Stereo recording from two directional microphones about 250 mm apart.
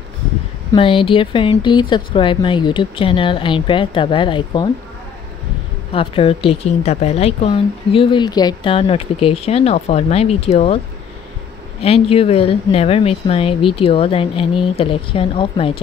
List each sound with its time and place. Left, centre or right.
0.7 s speech: left
5.9 s speech: left
11.8 s speech: left